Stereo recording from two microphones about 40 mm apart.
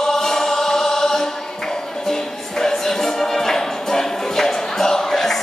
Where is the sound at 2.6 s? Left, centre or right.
Centre.